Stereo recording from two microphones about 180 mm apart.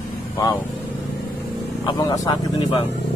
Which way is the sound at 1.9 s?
20° left (ahead or behind).